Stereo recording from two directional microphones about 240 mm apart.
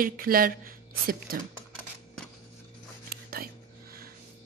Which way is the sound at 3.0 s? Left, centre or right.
Right.